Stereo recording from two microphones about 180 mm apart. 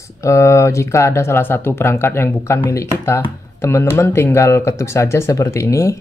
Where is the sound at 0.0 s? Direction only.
15° left (ahead or behind).